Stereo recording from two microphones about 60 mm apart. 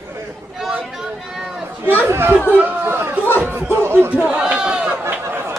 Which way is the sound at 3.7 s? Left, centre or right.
Right.